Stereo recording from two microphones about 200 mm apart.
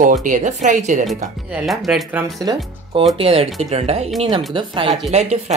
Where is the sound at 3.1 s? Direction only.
30° right (ahead or behind).